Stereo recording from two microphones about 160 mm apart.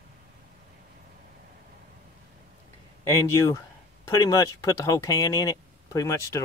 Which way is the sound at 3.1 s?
20° left (ahead or behind).